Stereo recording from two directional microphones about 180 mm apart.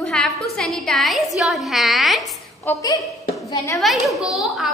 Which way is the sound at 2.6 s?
15° left (ahead or behind).